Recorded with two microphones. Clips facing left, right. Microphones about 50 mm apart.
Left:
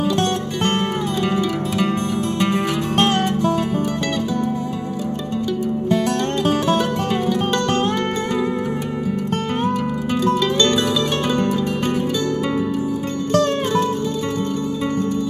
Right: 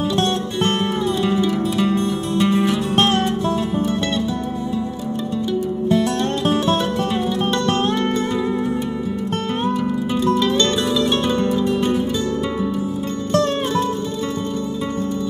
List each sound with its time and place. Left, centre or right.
1.8 s music: left